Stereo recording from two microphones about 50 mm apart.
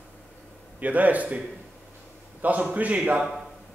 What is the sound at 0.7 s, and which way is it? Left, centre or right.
Speech, right.